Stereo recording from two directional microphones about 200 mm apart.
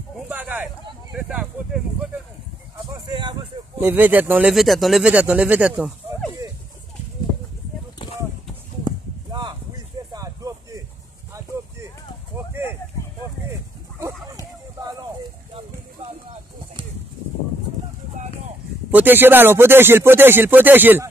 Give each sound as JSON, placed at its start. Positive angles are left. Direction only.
{"t": 0.3, "sound": "speech", "side_deg": -5}
{"t": 2.9, "sound": "speech", "side_deg": -20}
{"t": 3.7, "sound": "speech", "side_deg": -10}
{"t": 8.8, "sound": "a sound", "side_deg": -20}
{"t": 13.5, "sound": "a sound", "side_deg": -15}
{"t": 18.9, "sound": "speech", "side_deg": -10}